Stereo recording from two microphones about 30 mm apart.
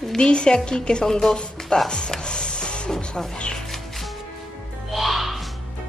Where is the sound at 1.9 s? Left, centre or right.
Left.